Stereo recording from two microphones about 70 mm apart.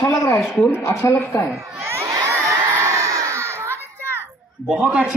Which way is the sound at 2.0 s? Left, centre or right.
Right.